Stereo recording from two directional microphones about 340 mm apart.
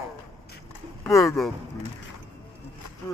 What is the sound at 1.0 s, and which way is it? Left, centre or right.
Speech, centre.